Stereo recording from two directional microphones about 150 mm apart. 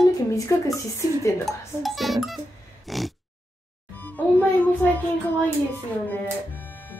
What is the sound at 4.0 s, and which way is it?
Music, 10° left (ahead or behind).